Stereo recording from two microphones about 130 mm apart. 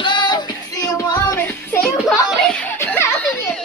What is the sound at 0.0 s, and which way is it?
Female singing, 35° left (ahead or behind).